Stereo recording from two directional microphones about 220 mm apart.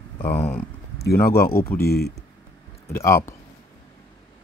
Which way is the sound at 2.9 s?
10° left (ahead or behind).